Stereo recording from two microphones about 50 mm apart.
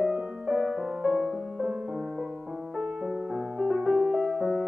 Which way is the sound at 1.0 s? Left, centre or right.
Centre.